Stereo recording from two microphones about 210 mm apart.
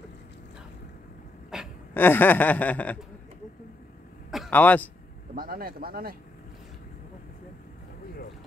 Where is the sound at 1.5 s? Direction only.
Centre (ahead or behind).